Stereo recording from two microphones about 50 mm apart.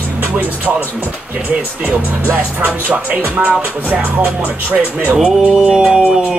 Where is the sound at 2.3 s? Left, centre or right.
Right.